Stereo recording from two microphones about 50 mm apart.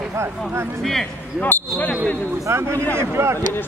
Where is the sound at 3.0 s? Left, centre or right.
Right.